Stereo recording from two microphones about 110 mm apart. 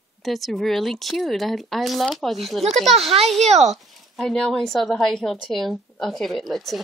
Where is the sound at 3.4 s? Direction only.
90° right.